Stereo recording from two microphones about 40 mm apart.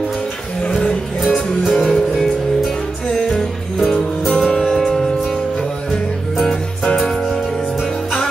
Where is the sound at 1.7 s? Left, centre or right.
Centre.